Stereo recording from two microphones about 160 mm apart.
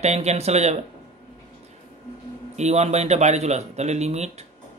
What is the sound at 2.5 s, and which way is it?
Speech, 45° right (ahead or behind).